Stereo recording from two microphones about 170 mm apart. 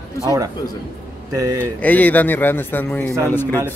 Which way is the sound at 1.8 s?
10° left (ahead or behind).